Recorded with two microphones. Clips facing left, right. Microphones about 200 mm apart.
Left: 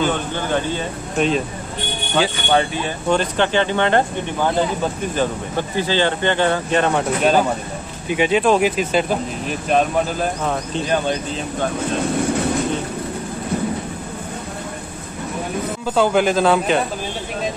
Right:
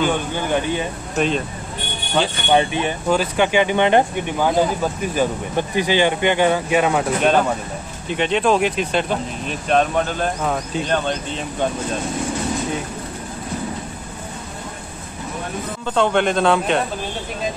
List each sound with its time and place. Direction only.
0.0 s speech: 15° right (ahead or behind)
1.1 s speech: centre (ahead or behind)
2.5 s speech: 20° right (ahead or behind); by 11.4 s 10° left (ahead or behind)
15.8 s speech: 5° left (ahead or behind)